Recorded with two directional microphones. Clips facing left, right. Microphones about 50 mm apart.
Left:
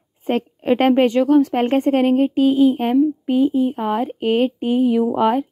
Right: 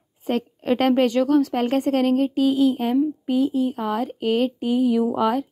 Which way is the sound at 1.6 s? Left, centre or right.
Left.